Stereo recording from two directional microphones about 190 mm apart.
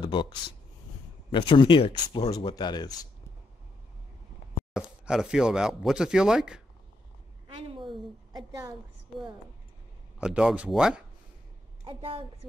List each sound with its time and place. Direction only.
0.0 s speech: 25° left (ahead or behind)
4.7 s speech: 5° right (ahead or behind)
7.4 s a sound: 25° right (ahead or behind)
10.1 s speech: 5° right (ahead or behind)
11.8 s a woman's voice: 30° right (ahead or behind)